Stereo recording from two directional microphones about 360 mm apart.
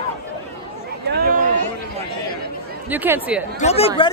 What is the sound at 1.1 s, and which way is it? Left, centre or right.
Speech, right.